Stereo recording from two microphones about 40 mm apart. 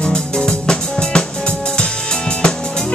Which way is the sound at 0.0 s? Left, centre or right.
Centre.